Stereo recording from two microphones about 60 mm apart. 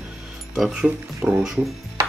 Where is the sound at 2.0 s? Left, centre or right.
Right.